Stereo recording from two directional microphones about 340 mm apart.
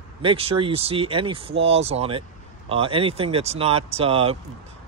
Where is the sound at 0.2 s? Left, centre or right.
Centre.